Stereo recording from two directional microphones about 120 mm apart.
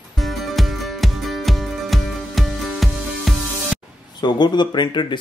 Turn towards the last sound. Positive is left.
turn(degrees=40)  # may be behind; listen again after turning